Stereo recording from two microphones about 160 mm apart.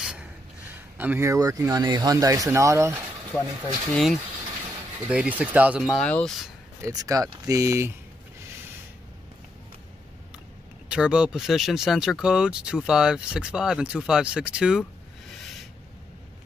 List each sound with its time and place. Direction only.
0.0 s a sound: 5° right (ahead or behind)
0.9 s speech: 15° right (ahead or behind)
3.9 s speech: 5° left (ahead or behind)
6.8 s speech: 20° right (ahead or behind)
10.9 s speech: 5° right (ahead or behind)